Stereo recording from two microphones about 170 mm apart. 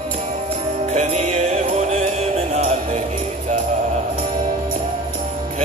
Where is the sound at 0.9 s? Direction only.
40° right (ahead or behind).